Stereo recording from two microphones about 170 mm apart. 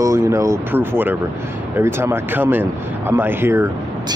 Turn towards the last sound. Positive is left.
turn(degrees=-15)  # may be behind; listen again after turning